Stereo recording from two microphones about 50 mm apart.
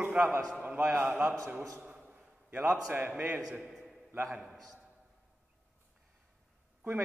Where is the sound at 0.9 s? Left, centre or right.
Right.